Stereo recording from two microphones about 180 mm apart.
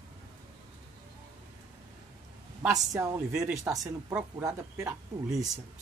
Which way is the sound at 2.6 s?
20° right (ahead or behind).